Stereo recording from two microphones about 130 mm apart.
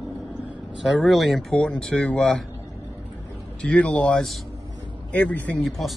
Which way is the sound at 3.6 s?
10° left (ahead or behind).